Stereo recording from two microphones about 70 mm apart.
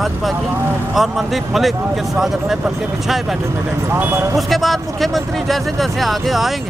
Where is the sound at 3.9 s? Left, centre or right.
Right.